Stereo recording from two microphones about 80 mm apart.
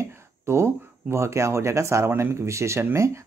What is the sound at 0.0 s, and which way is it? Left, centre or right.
Speech, right.